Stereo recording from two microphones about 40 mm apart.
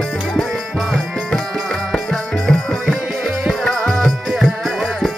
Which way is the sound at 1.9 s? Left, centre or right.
Centre.